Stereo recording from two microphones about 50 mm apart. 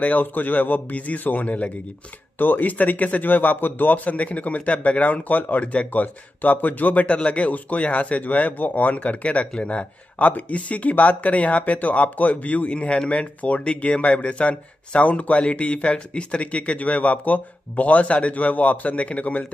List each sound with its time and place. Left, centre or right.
0.0 s speech: left
2.3 s speech: left